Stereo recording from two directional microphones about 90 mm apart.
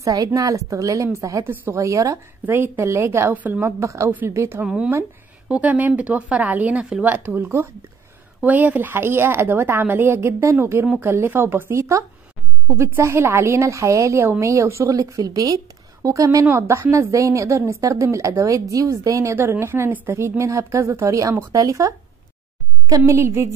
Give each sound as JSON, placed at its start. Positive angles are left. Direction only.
{"t": 0.0, "sound": "a woman's voice", "side_deg": -40}
{"t": 1.4, "sound": "a woman's voice", "side_deg": -20}
{"t": 1.7, "sound": "a woman's voice", "side_deg": -35}
{"t": 2.4, "sound": "a woman's voice", "side_deg": -25}
{"t": 3.3, "sound": "speech", "side_deg": -20}
{"t": 3.6, "sound": "a woman's voice", "side_deg": -35}
{"t": 4.1, "sound": "a woman's voice", "side_deg": -20}
{"t": 4.6, "sound": "a woman's voice", "side_deg": -10}